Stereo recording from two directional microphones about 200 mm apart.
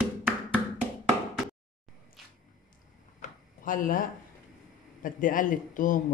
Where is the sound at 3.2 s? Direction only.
45° left (ahead or behind).